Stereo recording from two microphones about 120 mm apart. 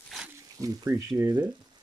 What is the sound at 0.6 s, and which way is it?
Speech, 30° right (ahead or behind).